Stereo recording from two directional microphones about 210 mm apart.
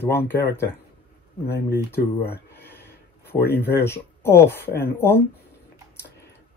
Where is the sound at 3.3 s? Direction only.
50° left (ahead or behind).